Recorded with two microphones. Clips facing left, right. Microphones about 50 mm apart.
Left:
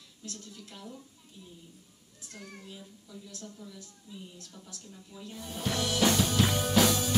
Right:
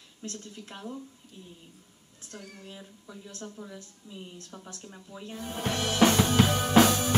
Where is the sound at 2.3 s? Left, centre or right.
Right.